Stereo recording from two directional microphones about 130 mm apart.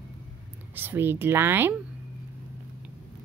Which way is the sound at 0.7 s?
15° right (ahead or behind).